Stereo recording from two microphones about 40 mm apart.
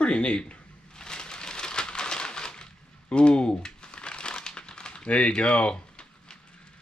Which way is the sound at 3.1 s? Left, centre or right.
Left.